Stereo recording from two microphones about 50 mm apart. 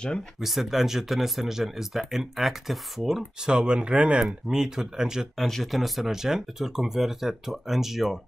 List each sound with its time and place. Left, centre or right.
0.4 s speech: centre
3.4 s speech: centre
4.5 s speech: centre
5.4 s speech: centre